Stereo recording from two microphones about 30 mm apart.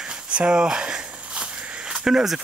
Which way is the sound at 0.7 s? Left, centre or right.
Right.